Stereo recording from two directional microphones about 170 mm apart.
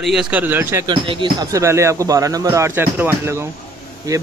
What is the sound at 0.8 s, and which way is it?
Speech, 25° right (ahead or behind).